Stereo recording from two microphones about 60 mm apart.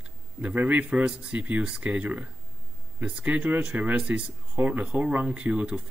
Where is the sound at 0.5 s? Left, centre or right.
Right.